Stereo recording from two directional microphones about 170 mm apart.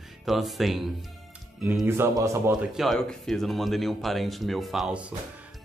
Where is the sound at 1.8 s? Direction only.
15° right (ahead or behind).